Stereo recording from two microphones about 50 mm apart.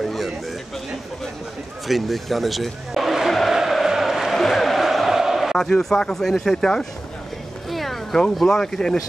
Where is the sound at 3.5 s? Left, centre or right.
Centre.